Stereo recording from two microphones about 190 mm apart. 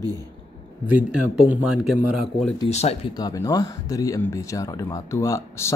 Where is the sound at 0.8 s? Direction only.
10° right (ahead or behind).